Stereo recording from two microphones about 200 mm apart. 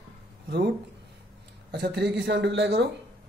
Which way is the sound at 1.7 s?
55° right (ahead or behind).